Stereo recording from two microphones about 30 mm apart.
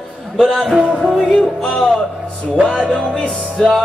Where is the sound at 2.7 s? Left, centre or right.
Right.